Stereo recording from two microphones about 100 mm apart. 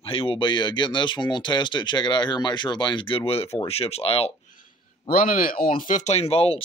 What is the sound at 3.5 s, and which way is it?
Speech, 85° left.